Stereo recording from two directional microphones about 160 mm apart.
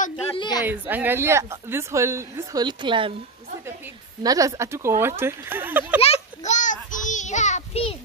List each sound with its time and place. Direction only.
0.3 s a sound: 25° left (ahead or behind)
0.7 s speech: 10° right (ahead or behind); by 3.2 s 30° right (ahead or behind)
4.2 s a woman's voice: 20° right (ahead or behind)
5.9 s child singing: 45° left (ahead or behind)